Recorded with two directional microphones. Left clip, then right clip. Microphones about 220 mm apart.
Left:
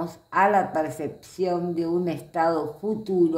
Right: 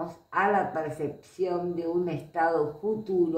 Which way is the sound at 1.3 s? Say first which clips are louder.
Left 5 dB; 50° left (ahead or behind).